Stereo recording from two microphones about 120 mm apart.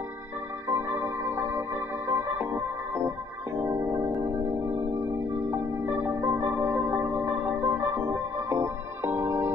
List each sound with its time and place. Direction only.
0.7 s music: 20° right (ahead or behind)
3.5 s keyboard: 25° right (ahead or behind)
5.5 s music: 20° right (ahead or behind)